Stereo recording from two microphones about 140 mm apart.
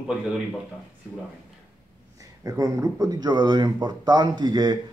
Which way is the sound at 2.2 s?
25° right (ahead or behind).